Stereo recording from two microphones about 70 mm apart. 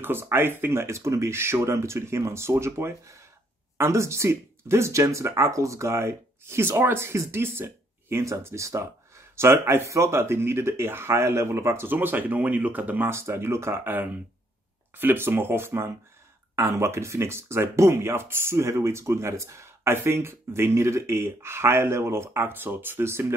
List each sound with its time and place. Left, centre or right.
0.0 s speech: right
13.1 s speech: right